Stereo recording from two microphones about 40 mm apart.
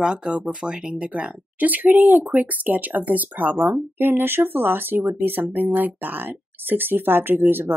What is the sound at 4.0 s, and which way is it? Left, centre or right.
Speech, right.